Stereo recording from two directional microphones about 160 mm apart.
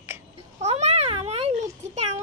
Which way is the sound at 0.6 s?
40° right (ahead or behind).